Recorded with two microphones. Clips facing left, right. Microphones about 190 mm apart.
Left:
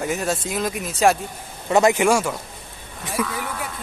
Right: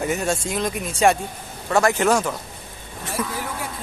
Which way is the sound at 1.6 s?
20° left (ahead or behind).